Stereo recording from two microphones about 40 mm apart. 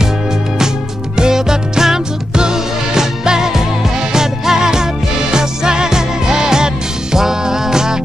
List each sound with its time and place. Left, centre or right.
1.1 s music: centre